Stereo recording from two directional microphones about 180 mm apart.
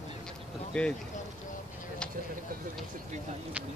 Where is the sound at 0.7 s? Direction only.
5° left (ahead or behind).